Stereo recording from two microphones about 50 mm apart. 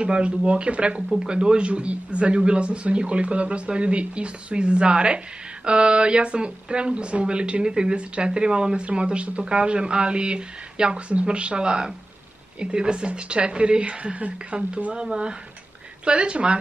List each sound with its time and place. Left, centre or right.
0.0 s a man's voice: right